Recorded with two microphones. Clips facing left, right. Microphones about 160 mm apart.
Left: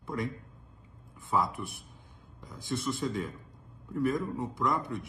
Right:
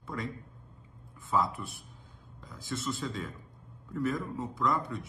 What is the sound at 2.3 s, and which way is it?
A man's voice, 20° left (ahead or behind).